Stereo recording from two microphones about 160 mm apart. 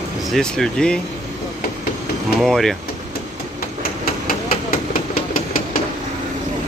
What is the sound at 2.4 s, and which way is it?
Speech, centre (ahead or behind).